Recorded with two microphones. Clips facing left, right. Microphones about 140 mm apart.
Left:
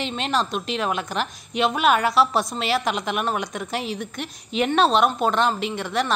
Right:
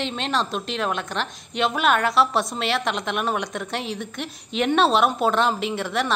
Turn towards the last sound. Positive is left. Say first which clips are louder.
# even
turn(degrees=0)  # may be behind; listen again after turning